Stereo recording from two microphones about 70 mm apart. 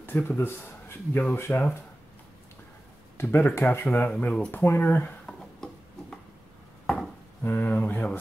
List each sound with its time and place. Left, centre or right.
0.0 s speech: left
3.2 s speech: left
5.2 s a sound: centre
7.4 s speech: left